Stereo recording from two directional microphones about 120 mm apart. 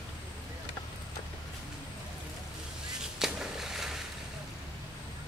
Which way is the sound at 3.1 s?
5° right (ahead or behind).